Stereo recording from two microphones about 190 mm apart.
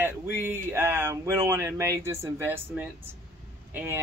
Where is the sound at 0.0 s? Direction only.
10° right (ahead or behind).